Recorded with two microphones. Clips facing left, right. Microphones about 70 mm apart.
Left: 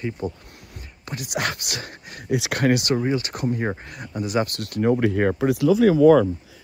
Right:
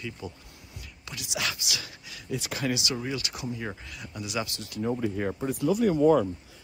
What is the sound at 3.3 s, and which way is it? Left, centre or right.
Speech, left.